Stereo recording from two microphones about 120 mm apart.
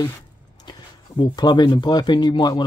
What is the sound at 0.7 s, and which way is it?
Speech, 35° left (ahead or behind).